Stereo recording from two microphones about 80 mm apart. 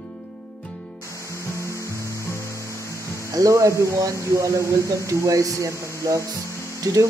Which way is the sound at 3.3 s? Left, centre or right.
Right.